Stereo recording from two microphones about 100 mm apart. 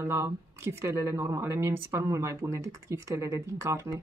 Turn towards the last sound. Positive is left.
turn(degrees=-30)  # may be behind; listen again after turning